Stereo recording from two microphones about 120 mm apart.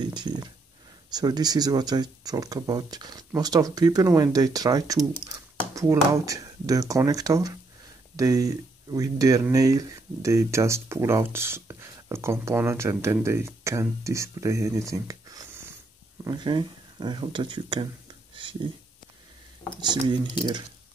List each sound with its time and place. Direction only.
0.0 s speech: 35° right (ahead or behind)
5.2 s computer keyboard: 30° right (ahead or behind)
6.1 s speech: 30° right (ahead or behind)
18.3 s a sound: 45° right (ahead or behind)
19.8 s speech: 40° right (ahead or behind)